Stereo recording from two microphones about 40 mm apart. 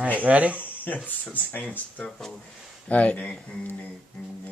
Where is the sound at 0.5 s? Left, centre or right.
Left.